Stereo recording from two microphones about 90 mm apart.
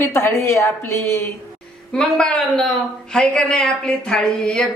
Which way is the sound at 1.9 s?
10° left (ahead or behind).